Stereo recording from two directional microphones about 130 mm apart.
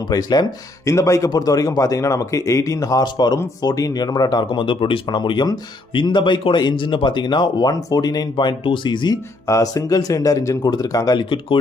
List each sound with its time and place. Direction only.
0.0 s speech: 30° left (ahead or behind)